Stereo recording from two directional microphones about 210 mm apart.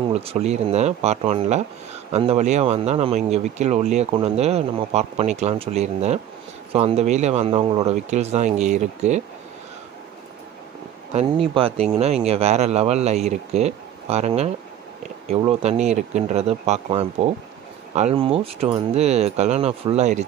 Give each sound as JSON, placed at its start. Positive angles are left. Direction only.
{"t": 0.1, "sound": "speech", "side_deg": -30}
{"t": 11.1, "sound": "speech", "side_deg": -25}